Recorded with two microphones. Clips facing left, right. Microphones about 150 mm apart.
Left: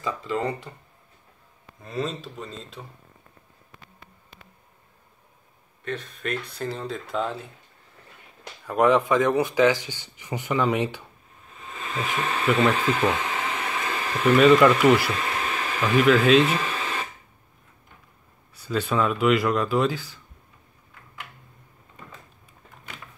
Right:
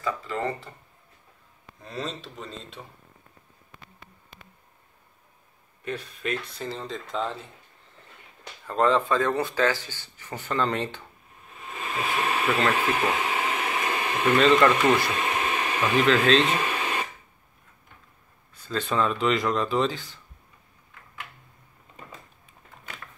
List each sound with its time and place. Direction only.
0.0 s speech: 20° left (ahead or behind)
1.8 s speech: 5° left (ahead or behind)
5.9 s speech: 5° right (ahead or behind)
8.6 s speech: 15° left (ahead or behind)
11.6 s speech: 5° right (ahead or behind)
12.7 s a sound: 15° right (ahead or behind)
14.3 s speech: 10° left (ahead or behind)
15.0 s a sound: 15° right (ahead or behind)
16.0 s speech: 5° left (ahead or behind)
16.5 s radio: 15° right (ahead or behind)
18.5 s speech: 10° left (ahead or behind)